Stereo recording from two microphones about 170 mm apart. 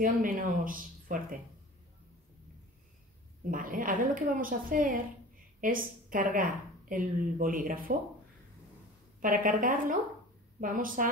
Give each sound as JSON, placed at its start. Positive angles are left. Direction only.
{"t": 0.0, "sound": "a woman's voice", "side_deg": -55}
{"t": 3.4, "sound": "a woman's voice", "side_deg": -55}
{"t": 9.2, "sound": "speech", "side_deg": -55}